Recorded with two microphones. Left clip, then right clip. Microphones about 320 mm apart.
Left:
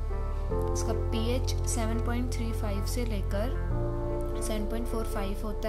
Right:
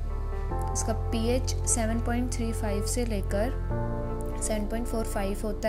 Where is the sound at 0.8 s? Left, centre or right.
Centre.